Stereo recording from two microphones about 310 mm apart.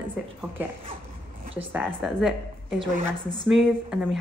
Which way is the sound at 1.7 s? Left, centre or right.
Centre.